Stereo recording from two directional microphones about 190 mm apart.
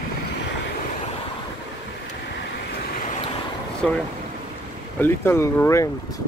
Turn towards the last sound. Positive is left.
turn(degrees=15)  # may be behind; listen again after turning